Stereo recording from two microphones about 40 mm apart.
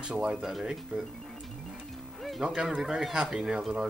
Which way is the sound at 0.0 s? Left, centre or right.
Right.